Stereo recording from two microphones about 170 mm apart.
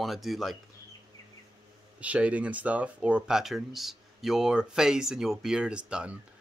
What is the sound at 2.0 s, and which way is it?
Speech, 10° right (ahead or behind).